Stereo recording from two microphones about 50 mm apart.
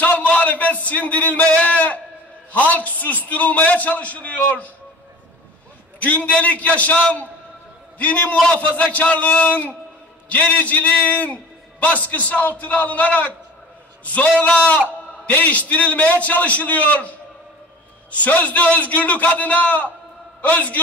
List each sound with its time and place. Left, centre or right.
0.0 s a sound: left
0.8 s a man's voice: left
5.9 s a man's voice: left
18.1 s a man's voice: left